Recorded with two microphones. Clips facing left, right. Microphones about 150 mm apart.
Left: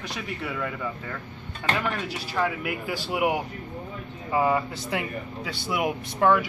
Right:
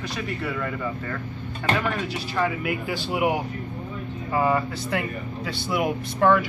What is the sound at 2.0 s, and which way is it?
Speech, 10° left (ahead or behind).